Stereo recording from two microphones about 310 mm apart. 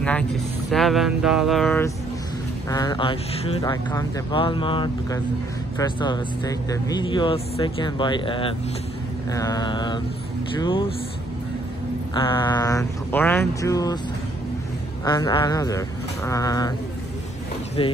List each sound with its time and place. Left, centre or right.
0.7 s speech: centre
2.7 s speech: centre
12.1 s speech: centre
15.0 s speech: centre
17.8 s speech: centre